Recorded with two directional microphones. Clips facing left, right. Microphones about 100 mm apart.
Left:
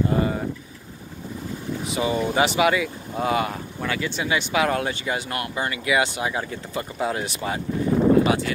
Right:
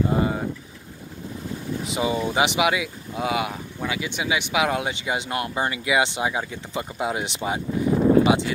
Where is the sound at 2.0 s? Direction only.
15° right (ahead or behind).